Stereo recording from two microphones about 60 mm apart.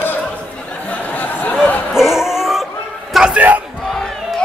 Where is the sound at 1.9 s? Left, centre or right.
Centre.